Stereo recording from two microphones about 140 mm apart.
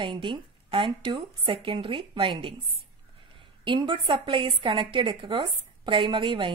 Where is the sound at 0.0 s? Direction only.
35° right (ahead or behind).